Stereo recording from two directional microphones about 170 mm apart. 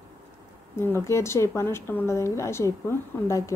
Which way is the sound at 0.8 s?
15° left (ahead or behind).